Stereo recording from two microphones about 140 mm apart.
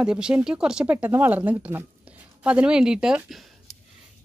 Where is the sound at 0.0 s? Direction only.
5° right (ahead or behind).